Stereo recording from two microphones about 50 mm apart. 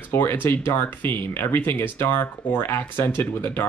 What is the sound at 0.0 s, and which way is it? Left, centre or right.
Speech, left.